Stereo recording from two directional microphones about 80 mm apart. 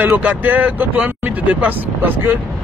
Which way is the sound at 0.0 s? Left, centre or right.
Centre.